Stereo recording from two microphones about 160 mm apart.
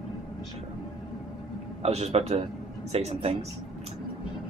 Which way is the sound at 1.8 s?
40° right (ahead or behind).